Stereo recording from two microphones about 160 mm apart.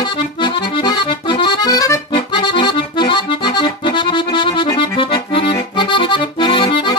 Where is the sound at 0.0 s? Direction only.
30° left (ahead or behind).